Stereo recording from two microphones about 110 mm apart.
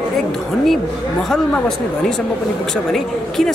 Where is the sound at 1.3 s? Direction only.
5° left (ahead or behind).